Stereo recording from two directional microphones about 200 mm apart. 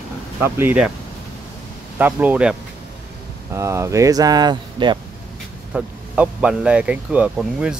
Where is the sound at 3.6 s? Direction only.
15° right (ahead or behind).